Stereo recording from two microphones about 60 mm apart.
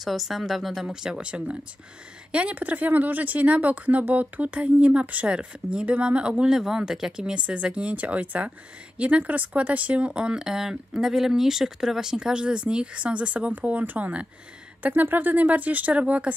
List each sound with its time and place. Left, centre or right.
0.0 s speech: centre
0.8 s speech: centre